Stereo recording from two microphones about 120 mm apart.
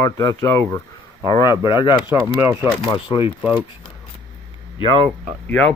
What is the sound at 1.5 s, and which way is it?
Speech, 25° right (ahead or behind).